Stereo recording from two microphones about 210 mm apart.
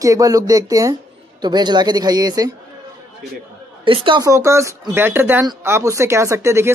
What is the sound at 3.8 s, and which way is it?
Speech, 25° right (ahead or behind).